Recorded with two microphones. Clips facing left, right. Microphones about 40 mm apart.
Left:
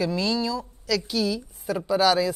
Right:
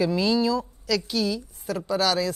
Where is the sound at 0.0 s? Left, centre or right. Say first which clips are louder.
Right 3 dB; centre.